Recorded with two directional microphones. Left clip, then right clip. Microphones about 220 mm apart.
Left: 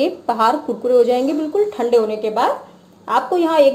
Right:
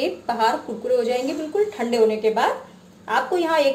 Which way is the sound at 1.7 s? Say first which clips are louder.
Left 2 dB; 30° left (ahead or behind).